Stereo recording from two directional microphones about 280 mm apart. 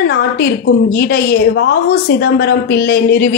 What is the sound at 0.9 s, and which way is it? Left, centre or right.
A woman's voice, left.